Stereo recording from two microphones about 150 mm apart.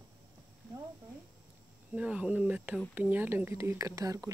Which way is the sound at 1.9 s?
5° right (ahead or behind).